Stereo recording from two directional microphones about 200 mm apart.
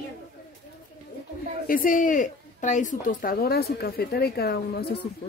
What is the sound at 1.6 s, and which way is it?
Speech, 45° left (ahead or behind).